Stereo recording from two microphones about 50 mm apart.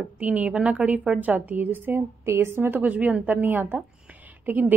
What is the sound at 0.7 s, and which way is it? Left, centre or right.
Speech, right.